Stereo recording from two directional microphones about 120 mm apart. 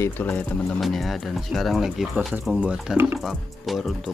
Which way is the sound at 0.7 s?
Centre (ahead or behind).